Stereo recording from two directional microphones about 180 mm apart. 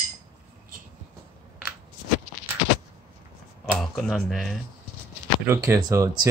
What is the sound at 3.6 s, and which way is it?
Speech, centre (ahead or behind).